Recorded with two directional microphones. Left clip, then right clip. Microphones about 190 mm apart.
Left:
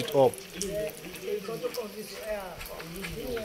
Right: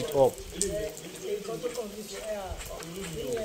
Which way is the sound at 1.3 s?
65° right (ahead or behind).